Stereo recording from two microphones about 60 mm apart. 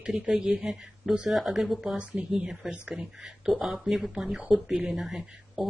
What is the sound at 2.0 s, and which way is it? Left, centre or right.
Speech, centre.